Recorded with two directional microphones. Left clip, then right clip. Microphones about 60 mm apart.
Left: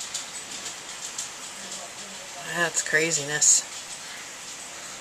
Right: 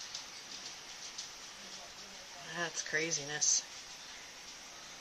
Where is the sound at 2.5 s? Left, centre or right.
Centre.